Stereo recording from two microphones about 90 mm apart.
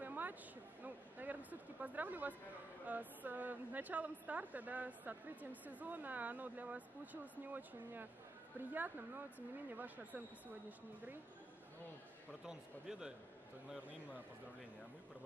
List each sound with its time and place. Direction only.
0.0 s a sound: 20° right (ahead or behind)
2.9 s a woman's voice: 20° right (ahead or behind)
12.4 s speech: 5° right (ahead or behind)